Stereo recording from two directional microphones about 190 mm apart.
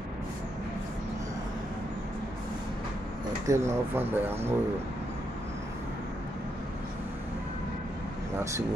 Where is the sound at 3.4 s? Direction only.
15° right (ahead or behind).